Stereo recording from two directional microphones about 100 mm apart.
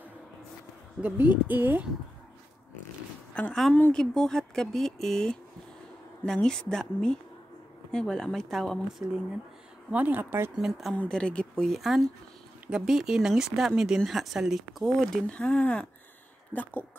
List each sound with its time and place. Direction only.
1.0 s speech: 20° right (ahead or behind)
3.4 s speech: 10° left (ahead or behind)
9.8 s a woman's voice: 15° right (ahead or behind)
10.5 s speech: 5° right (ahead or behind); by 16.7 s 15° left (ahead or behind)